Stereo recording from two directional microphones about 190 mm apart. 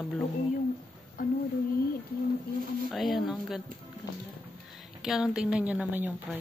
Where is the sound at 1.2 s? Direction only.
45° left (ahead or behind).